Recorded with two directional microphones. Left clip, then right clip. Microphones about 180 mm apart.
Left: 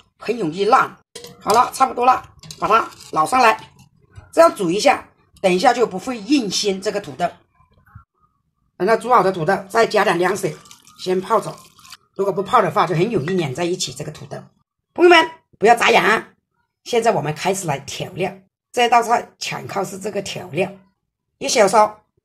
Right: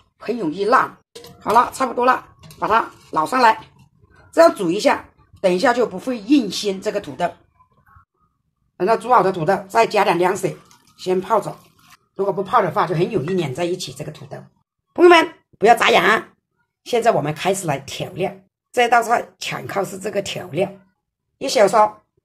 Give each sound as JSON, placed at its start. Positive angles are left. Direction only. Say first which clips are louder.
{"t": 0.2, "sound": "speech", "louder": "left 2 dB", "side_deg": 10}
{"t": 8.7, "sound": "speech", "louder": "even", "side_deg": 0}
{"t": 12.2, "sound": "speech", "louder": "left 1 dB", "side_deg": 10}
{"t": 14.9, "sound": "speech", "louder": "even", "side_deg": 0}